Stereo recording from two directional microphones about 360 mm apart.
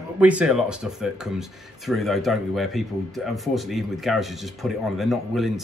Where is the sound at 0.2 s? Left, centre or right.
Centre.